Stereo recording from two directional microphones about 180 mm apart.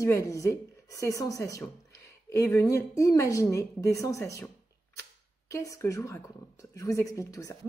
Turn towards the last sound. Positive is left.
turn(degrees=20)  # may be behind; listen again after turning